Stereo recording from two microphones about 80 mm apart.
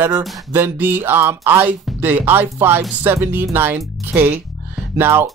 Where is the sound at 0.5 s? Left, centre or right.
Right.